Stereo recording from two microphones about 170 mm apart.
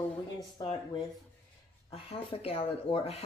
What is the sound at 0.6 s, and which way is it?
Speech, 30° left (ahead or behind).